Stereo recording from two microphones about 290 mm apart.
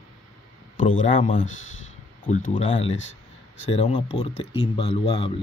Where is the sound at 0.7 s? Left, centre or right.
Left.